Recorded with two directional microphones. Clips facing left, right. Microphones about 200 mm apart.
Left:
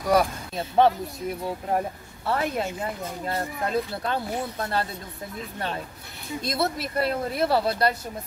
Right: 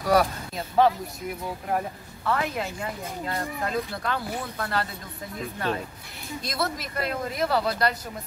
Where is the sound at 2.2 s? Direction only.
30° left (ahead or behind).